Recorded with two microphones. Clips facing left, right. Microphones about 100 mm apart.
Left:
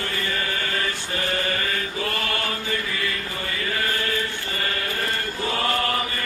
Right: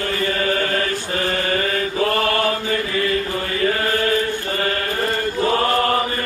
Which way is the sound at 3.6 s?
50° right (ahead or behind).